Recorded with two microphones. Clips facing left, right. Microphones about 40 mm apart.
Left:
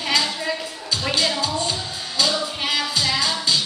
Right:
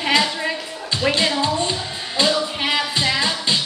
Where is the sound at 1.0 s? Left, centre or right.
Right.